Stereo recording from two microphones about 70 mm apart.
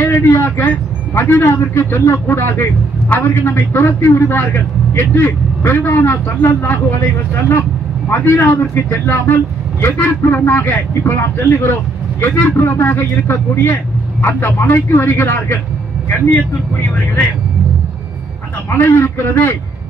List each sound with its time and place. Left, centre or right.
0.1 s a man's voice: left
8.1 s a man's voice: left
18.7 s a man's voice: left